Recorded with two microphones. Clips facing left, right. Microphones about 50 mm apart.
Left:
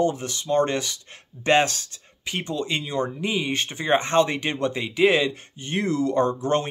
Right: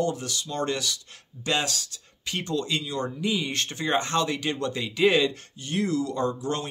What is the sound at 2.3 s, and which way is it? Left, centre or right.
Speech, centre.